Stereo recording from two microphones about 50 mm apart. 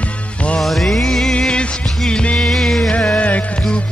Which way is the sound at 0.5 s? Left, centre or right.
Centre.